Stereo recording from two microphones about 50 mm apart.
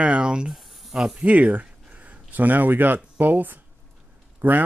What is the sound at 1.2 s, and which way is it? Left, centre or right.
A man's voice, right.